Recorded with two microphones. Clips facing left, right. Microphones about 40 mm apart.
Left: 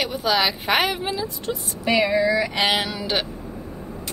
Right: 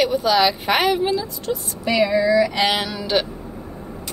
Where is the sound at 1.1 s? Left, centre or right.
Left.